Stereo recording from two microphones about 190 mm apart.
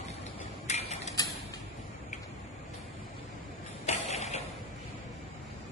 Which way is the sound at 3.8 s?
35° left (ahead or behind).